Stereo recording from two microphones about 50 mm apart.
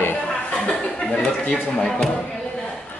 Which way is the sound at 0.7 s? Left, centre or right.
Centre.